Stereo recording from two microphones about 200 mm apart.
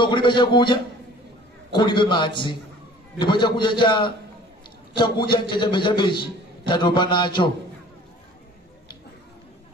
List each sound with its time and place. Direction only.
0.0 s a man's voice: 25° left (ahead or behind)